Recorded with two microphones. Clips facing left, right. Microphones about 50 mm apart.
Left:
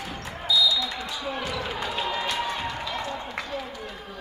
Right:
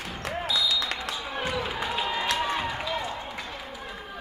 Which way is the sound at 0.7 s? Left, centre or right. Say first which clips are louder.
Even; right.